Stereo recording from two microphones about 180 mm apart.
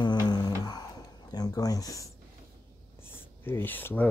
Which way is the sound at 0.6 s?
20° left (ahead or behind).